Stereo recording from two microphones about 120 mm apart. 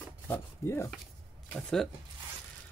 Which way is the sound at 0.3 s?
20° left (ahead or behind).